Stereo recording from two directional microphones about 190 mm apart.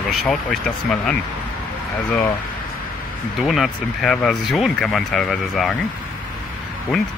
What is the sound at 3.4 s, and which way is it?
Speech, centre (ahead or behind).